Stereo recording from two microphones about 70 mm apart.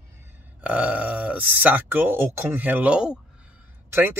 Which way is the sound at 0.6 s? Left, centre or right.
Centre.